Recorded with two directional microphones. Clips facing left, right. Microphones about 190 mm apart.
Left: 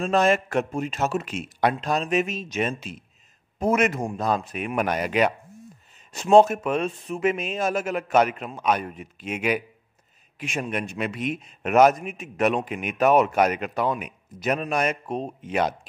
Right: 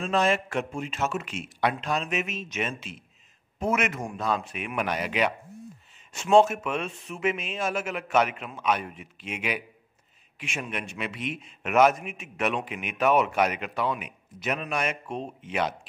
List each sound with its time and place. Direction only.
0.0 s a man's voice: 45° left (ahead or behind)